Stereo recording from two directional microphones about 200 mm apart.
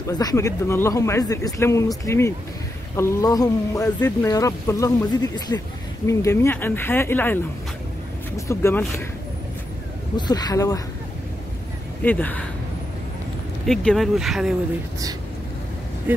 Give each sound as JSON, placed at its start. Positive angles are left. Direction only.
{"t": 0.2, "sound": "speech", "side_deg": 15}
{"t": 8.5, "sound": "speech", "side_deg": 15}
{"t": 10.1, "sound": "speech", "side_deg": 20}
{"t": 12.0, "sound": "speech", "side_deg": 10}
{"t": 13.7, "sound": "speech", "side_deg": 0}
{"t": 16.1, "sound": "speech", "side_deg": -10}